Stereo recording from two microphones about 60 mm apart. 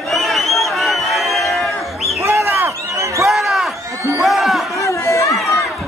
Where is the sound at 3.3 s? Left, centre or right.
Centre.